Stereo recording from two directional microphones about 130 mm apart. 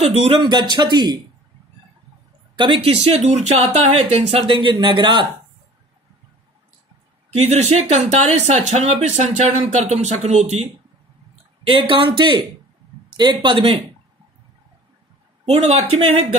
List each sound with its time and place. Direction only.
0.0 s speech: 50° right (ahead or behind); by 1.2 s 35° right (ahead or behind)
2.5 s speech: 40° right (ahead or behind)
4.5 s speech: 35° right (ahead or behind)
7.3 s speech: 55° right (ahead or behind)
11.6 s speech: 40° right (ahead or behind)
15.4 s speech: 55° right (ahead or behind)